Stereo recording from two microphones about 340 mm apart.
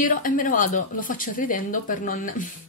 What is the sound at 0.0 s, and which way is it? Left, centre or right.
Speech, left.